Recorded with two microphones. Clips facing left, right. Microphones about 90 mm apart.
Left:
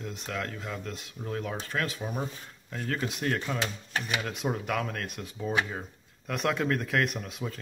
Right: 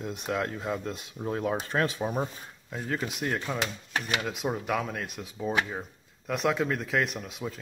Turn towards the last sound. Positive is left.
turn(degrees=-5)  # may be behind; listen again after turning